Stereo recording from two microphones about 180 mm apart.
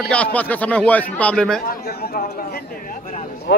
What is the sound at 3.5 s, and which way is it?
Speech, 80° left.